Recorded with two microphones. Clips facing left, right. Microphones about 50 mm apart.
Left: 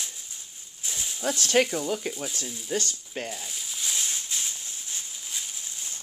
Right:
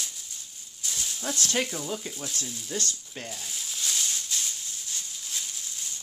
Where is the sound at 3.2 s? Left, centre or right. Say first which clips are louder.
Left 2 dB; centre.